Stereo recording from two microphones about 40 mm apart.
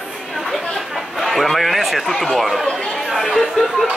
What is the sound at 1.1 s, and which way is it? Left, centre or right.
A man's voice, centre.